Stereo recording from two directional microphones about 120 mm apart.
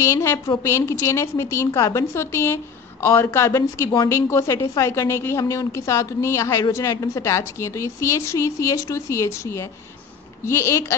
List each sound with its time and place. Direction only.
0.0 s a woman's voice: 25° left (ahead or behind)